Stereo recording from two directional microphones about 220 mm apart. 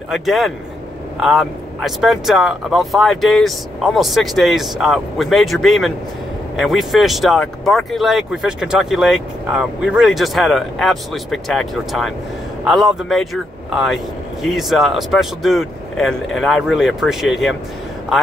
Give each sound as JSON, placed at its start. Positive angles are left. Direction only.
{"t": 0.1, "sound": "speech", "side_deg": 0}